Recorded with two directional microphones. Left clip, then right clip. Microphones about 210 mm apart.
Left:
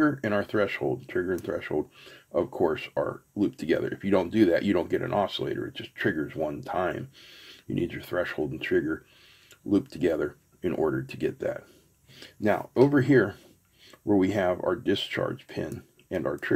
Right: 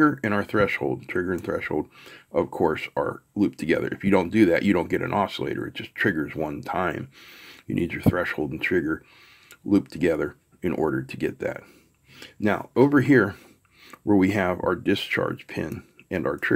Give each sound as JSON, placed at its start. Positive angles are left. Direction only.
{"t": 0.0, "sound": "speech", "side_deg": -25}